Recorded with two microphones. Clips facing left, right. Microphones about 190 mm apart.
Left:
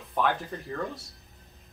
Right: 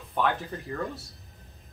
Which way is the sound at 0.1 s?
Centre (ahead or behind).